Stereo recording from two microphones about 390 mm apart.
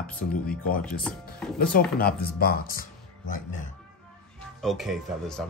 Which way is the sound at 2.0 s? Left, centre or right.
Left.